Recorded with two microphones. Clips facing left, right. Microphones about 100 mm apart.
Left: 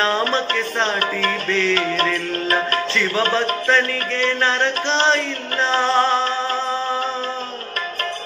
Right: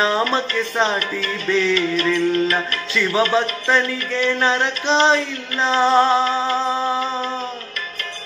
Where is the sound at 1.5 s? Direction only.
15° right (ahead or behind).